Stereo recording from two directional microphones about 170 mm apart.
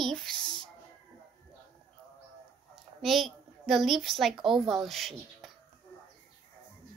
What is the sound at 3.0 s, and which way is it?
A woman's voice, centre (ahead or behind).